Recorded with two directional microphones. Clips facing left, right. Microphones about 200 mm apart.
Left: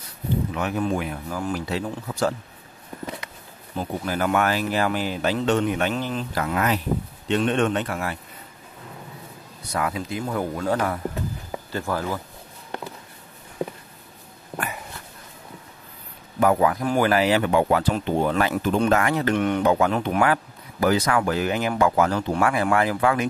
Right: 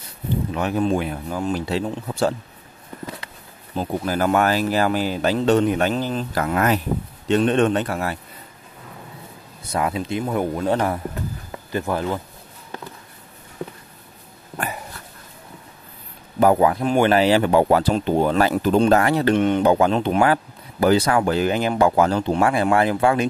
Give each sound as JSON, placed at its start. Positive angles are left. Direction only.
{"t": 0.6, "sound": "speech", "side_deg": -30}
{"t": 3.7, "sound": "speech", "side_deg": -35}
{"t": 9.6, "sound": "speech", "side_deg": -25}
{"t": 16.3, "sound": "speech", "side_deg": -30}